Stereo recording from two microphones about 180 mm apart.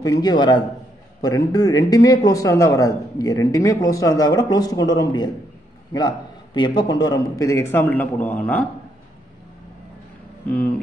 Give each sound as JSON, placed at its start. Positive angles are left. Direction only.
{"t": 0.0, "sound": "a man's voice", "side_deg": 20}
{"t": 10.4, "sound": "speech", "side_deg": 10}